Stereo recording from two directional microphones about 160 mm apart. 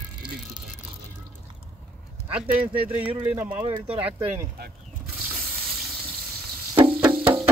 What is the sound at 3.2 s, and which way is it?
Speech, 10° right (ahead or behind).